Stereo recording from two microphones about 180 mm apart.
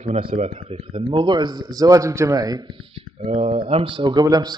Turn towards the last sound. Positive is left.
turn(degrees=-20)  # may be behind; listen again after turning